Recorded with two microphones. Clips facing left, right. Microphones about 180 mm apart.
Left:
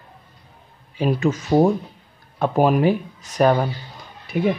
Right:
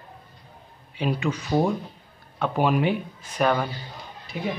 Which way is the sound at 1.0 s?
45° left (ahead or behind).